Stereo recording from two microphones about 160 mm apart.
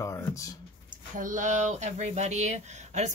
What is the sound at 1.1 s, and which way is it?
Speech, 55° right (ahead or behind).